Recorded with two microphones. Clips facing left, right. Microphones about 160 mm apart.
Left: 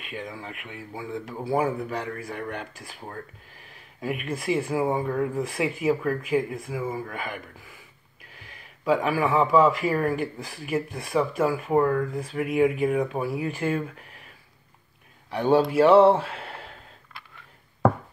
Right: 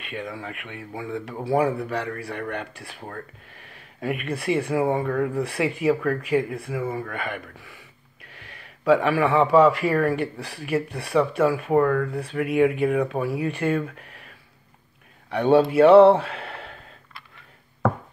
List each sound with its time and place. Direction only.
0.0 s speech: 70° right (ahead or behind)
7.5 s speech: 75° right (ahead or behind)
11.7 s speech: 60° right (ahead or behind)
15.2 s a man's voice: 65° right (ahead or behind)